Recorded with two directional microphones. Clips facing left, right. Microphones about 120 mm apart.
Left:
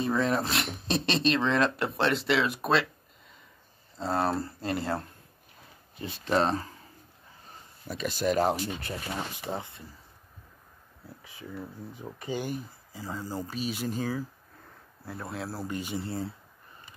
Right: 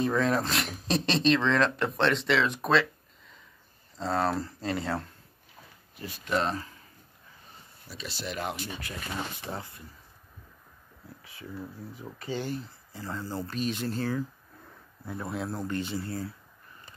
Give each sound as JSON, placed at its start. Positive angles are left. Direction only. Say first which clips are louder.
{"t": 0.0, "sound": "speech", "louder": "right 1 dB", "side_deg": 5}
{"t": 4.0, "sound": "speech", "louder": "even", "side_deg": 5}
{"t": 5.9, "sound": "speech", "louder": "left 3 dB", "side_deg": 25}
{"t": 7.9, "sound": "speech", "louder": "left 10 dB", "side_deg": 50}
{"t": 9.5, "sound": "speech", "louder": "left 3 dB", "side_deg": 25}
{"t": 11.9, "sound": "speech", "louder": "left 1 dB", "side_deg": 20}
{"t": 15.0, "sound": "speech", "louder": "right 3 dB", "side_deg": 0}
{"t": 16.0, "sound": "speech", "louder": "left 1 dB", "side_deg": 25}